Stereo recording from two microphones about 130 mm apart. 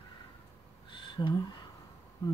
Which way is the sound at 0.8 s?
40° left (ahead or behind).